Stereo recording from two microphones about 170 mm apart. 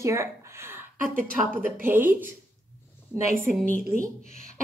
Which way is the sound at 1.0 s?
50° right (ahead or behind).